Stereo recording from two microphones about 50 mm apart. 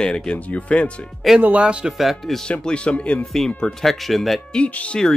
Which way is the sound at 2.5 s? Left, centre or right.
Left.